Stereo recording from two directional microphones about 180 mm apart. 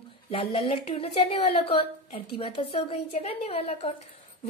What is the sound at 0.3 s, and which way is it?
A woman's voice, 30° left (ahead or behind).